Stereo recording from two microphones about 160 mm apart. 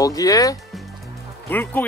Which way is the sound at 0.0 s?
20° left (ahead or behind).